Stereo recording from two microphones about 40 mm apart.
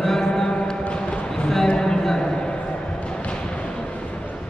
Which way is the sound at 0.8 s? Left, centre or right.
Left.